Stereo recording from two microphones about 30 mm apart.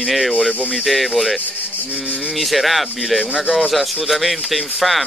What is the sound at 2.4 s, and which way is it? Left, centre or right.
Speech, centre.